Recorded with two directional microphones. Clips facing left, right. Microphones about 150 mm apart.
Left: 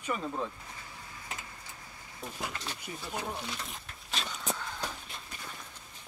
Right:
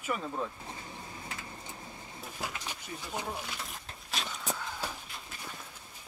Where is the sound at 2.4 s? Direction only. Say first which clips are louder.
Even; 10° right (ahead or behind).